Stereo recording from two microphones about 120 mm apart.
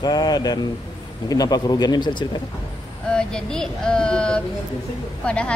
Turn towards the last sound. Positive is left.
turn(degrees=10)  # may be behind; listen again after turning